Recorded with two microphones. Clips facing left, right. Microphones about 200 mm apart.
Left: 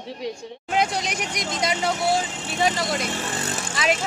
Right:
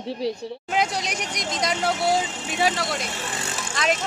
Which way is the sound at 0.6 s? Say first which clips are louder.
Left 2 dB; centre (ahead or behind).